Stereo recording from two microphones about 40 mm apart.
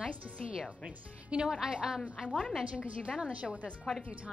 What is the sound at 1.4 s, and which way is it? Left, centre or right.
Speech, centre.